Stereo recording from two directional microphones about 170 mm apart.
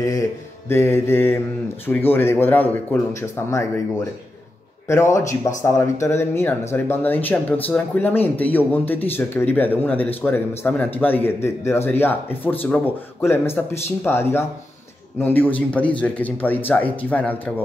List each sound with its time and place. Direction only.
0.0 s speech: 20° left (ahead or behind)
4.8 s speech: 15° left (ahead or behind)